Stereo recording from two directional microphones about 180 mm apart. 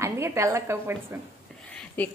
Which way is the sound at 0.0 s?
15° right (ahead or behind).